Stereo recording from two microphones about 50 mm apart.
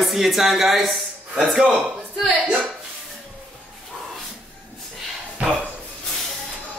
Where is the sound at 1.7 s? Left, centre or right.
Right.